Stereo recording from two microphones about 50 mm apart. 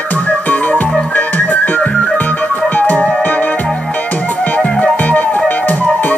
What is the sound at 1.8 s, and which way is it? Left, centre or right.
Music, centre.